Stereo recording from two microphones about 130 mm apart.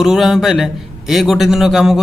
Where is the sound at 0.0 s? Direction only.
5° right (ahead or behind).